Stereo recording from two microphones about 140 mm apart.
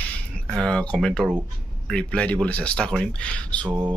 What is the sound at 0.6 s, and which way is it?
Speech, 5° left (ahead or behind).